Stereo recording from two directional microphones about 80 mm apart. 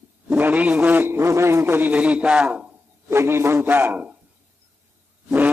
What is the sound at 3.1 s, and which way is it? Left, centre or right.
A man's voice, right.